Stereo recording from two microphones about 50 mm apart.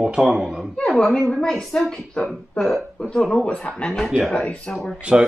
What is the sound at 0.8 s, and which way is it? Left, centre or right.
A woman's voice, centre.